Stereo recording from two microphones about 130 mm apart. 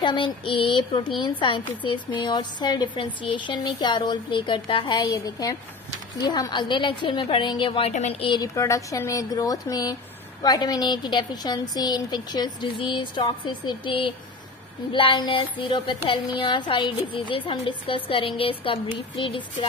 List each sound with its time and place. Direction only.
0.0 s a woman's voice: 40° left (ahead or behind)
7.9 s a woman's voice: 60° left (ahead or behind)
8.2 s a woman's voice: 35° left (ahead or behind)